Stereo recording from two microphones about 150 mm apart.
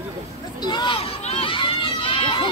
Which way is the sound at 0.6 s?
30° left (ahead or behind).